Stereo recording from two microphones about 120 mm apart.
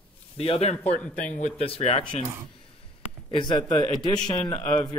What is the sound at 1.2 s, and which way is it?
Speech, 70° left (ahead or behind).